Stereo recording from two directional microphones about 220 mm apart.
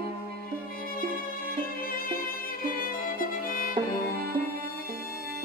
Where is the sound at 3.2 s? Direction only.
40° left (ahead or behind).